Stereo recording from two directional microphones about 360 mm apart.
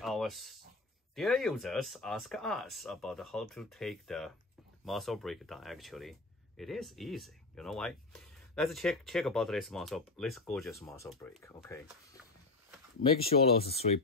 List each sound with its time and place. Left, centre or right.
0.0 s a sound: centre
1.1 s speech: centre
13.2 s speech: centre